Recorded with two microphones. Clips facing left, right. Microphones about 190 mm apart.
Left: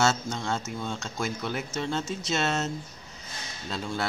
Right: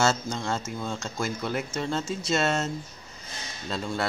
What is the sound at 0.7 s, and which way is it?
Speech, centre (ahead or behind).